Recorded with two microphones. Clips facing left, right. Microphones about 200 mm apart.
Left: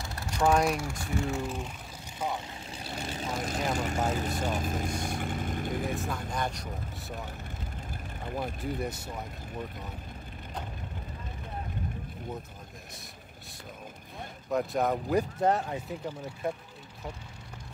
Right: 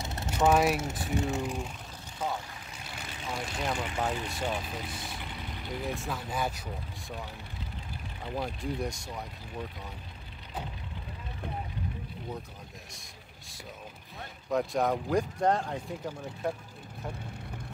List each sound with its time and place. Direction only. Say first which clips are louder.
0.0 s vehicle: right 1 dB; 20° right (ahead or behind)
0.5 s speech: right 1 dB; 5° right (ahead or behind)
0.7 s speech: right 1 dB; 20° right (ahead or behind)
2.1 s speech: even; 15° left (ahead or behind)
2.7 s vehicle: left 8 dB; 30° left (ahead or behind)
3.7 s speech: left 2 dB; 45° left (ahead or behind)
5.9 s speech: left 1 dB; centre (ahead or behind)
8.5 s speech: even; 5° left (ahead or behind)
14.5 s speech: even; centre (ahead or behind)